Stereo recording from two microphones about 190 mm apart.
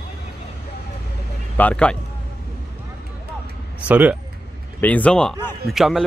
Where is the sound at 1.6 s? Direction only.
5° left (ahead or behind).